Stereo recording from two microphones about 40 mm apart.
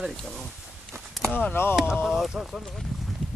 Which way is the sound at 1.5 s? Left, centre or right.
Left.